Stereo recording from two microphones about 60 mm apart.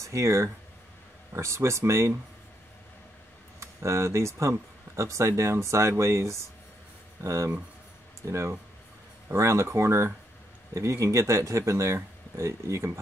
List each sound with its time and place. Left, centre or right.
0.0 s speech: right
3.5 s speech: right